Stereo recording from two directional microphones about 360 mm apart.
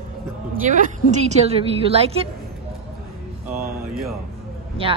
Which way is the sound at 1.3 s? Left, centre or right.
Centre.